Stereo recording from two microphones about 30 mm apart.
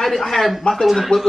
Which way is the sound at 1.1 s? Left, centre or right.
Left.